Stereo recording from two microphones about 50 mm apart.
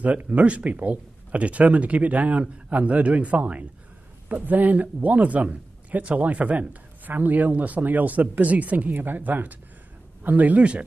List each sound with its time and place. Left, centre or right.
0.0 s a man's voice: right